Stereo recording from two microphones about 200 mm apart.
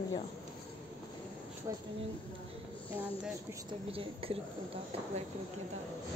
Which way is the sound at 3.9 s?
30° right (ahead or behind).